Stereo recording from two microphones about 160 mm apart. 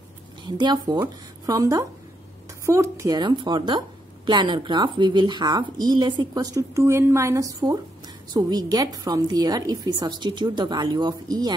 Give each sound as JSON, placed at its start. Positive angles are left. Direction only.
{"t": 0.4, "sound": "speech", "side_deg": -25}